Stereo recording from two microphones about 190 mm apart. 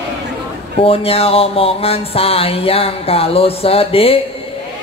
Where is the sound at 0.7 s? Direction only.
30° left (ahead or behind).